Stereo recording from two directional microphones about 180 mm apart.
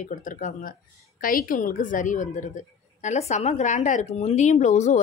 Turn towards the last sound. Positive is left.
turn(degrees=40)  # may be behind; listen again after turning